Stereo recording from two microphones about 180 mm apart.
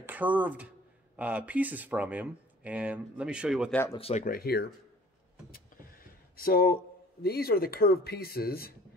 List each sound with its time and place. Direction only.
0.0 s speech: 10° right (ahead or behind)
4.1 s speech: 50° left (ahead or behind)